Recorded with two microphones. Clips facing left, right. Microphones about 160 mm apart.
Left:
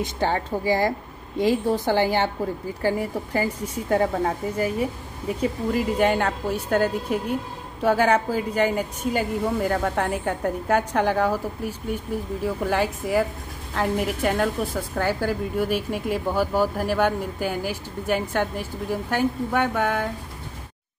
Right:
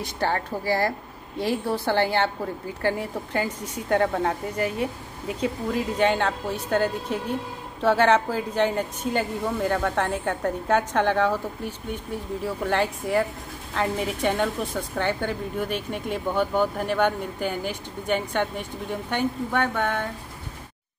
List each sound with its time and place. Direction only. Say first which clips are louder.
0.0 s a woman's voice: left 2 dB; 15° left (ahead or behind)